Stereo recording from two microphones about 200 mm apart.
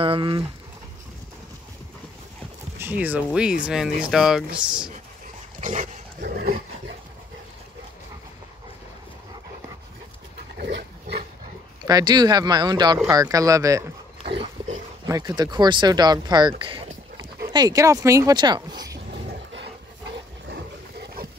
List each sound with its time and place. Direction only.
0.0 s speech: 25° right (ahead or behind)
2.8 s speech: 10° right (ahead or behind)
5.6 s dog: 35° right (ahead or behind)
6.4 s a sound: 50° right (ahead or behind)
10.6 s pig: 55° right (ahead or behind)
11.8 s speech: 20° right (ahead or behind)
14.6 s dog: 30° right (ahead or behind)
15.0 s speech: 15° right (ahead or behind)
21.0 s boat: 50° right (ahead or behind)